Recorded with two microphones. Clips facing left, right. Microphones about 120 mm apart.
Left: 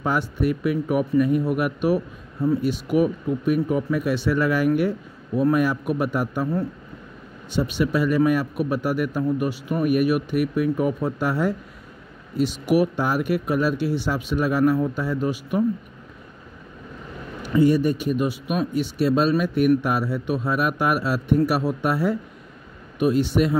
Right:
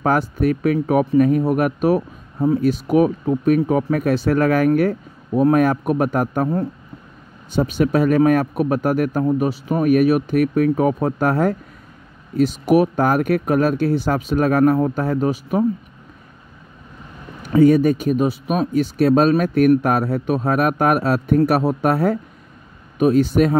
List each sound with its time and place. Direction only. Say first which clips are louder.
0.0 s speech: right 5 dB; 50° right (ahead or behind)
18.1 s speech: right 5 dB; 40° right (ahead or behind)
18.6 s speech: right 5 dB; 50° right (ahead or behind)